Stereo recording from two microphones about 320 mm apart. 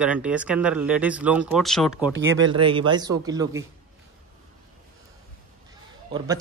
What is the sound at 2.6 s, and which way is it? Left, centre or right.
Speech, centre.